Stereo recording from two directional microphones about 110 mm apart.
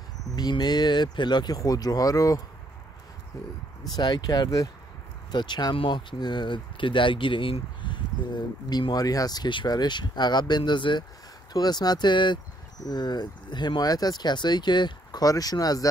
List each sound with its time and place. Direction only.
0.4 s speech: 40° left (ahead or behind)
3.9 s speech: 40° left (ahead or behind)